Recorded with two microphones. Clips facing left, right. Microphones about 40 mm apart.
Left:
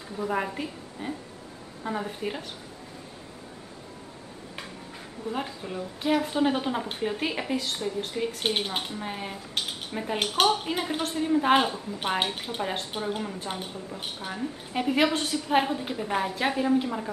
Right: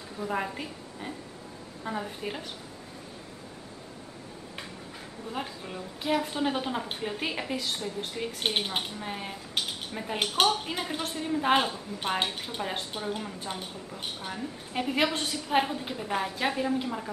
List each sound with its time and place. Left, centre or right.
0.2 s a woman's voice: centre
5.3 s a woman's voice: centre
14.2 s a woman's voice: centre